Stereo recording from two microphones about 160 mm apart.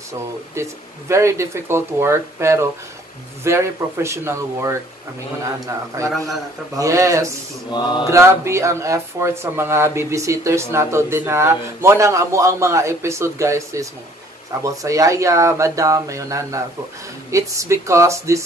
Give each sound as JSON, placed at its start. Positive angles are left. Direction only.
{"t": 0.6, "sound": "speech", "side_deg": -15}
{"t": 5.9, "sound": "speech", "side_deg": -20}
{"t": 7.7, "sound": "mantra", "side_deg": 30}
{"t": 8.1, "sound": "speech", "side_deg": -15}